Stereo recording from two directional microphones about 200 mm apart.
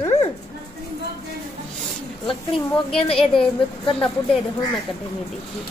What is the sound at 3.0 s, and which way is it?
A woman's voice, 25° left (ahead or behind).